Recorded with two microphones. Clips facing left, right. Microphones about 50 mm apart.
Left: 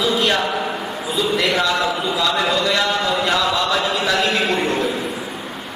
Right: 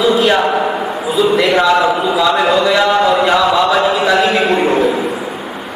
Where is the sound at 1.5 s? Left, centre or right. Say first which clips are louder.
Right 8 dB; centre.